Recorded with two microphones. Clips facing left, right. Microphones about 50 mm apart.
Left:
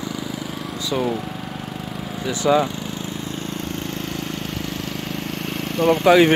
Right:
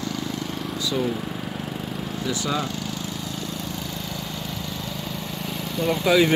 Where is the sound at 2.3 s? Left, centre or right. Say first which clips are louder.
Left 9 dB; left.